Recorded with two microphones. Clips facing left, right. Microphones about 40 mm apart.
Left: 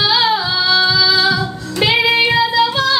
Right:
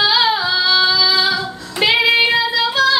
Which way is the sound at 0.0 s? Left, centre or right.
Centre.